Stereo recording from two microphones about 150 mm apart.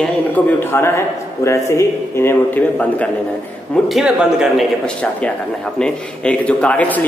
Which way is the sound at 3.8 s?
5° right (ahead or behind).